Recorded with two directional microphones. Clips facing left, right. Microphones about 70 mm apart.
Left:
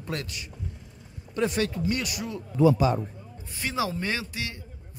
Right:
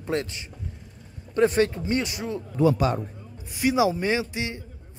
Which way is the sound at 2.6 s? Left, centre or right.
Right.